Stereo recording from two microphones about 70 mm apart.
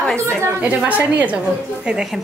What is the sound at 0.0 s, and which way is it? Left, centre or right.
Speech, centre.